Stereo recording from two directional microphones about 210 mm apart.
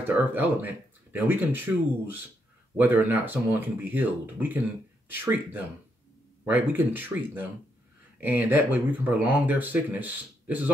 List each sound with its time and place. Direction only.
0.0 s speech: 10° right (ahead or behind)